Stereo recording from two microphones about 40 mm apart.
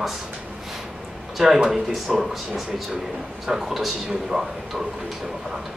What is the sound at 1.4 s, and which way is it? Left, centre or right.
Speech, centre.